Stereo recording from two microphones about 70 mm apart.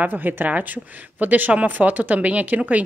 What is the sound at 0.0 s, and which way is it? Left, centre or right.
Speech, right.